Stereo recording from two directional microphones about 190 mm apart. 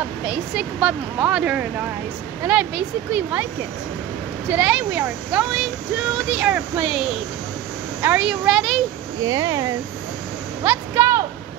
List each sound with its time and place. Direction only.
0.6 s speech: 5° right (ahead or behind)
4.5 s speech: 5° right (ahead or behind)
9.2 s speech: 20° right (ahead or behind)
10.6 s a sound: 10° right (ahead or behind)